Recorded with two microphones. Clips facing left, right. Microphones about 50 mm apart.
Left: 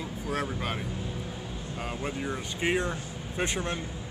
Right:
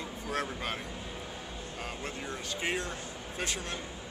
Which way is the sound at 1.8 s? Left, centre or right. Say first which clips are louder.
Left 6 dB; centre.